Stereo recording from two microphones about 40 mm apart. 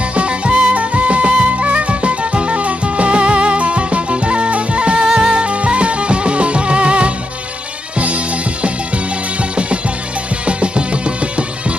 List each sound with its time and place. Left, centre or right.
0.1 s music: right
5.0 s music: centre
5.3 s music: right